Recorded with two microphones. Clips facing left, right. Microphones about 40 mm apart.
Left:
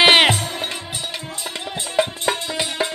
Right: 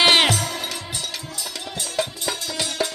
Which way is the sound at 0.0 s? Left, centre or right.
Left.